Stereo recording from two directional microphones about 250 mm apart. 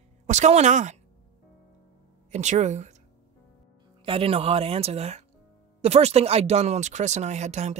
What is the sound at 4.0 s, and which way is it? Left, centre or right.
Speech, right.